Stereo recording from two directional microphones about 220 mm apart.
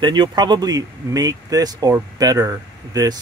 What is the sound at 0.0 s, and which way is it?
Speech, 20° right (ahead or behind).